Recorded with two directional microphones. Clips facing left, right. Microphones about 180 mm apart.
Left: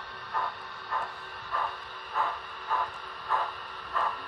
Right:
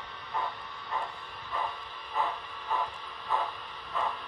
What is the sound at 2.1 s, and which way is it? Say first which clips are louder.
Hiss: even; centre (ahead or behind).